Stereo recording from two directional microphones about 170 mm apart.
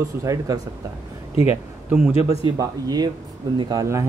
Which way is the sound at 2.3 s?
20° right (ahead or behind).